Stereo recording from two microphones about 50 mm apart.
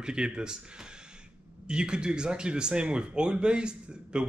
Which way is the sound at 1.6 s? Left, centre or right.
Centre.